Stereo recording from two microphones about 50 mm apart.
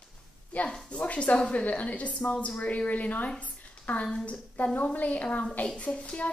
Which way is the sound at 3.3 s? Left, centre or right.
Left.